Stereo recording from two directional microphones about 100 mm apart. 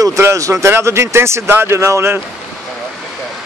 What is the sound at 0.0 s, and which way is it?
Speech, 30° right (ahead or behind).